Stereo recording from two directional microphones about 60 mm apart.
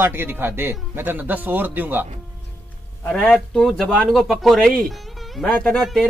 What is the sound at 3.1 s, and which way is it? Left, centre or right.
Speech, centre.